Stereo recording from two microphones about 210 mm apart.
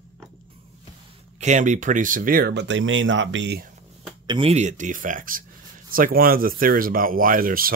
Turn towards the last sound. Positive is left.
turn(degrees=-45)  # may be behind; listen again after turning